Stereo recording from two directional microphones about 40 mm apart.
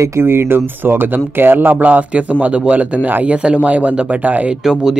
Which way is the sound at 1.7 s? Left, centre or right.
Right.